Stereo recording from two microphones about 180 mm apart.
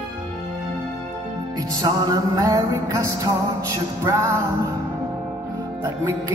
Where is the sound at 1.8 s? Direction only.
20° right (ahead or behind).